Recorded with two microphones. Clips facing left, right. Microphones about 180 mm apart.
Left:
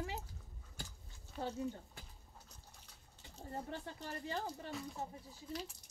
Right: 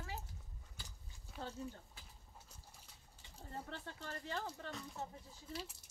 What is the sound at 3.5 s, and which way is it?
Speech, 15° left (ahead or behind).